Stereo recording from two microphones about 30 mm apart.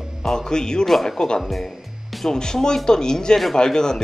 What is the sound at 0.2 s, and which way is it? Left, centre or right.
Speech, centre.